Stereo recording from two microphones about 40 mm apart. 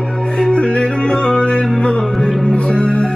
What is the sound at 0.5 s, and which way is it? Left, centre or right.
Music, left.